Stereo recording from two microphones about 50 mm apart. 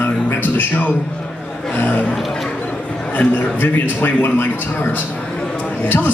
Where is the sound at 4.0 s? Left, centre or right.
Left.